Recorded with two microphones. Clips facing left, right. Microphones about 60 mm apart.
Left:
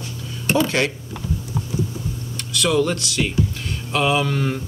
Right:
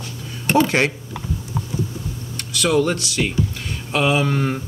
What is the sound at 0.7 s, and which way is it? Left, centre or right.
Speech, right.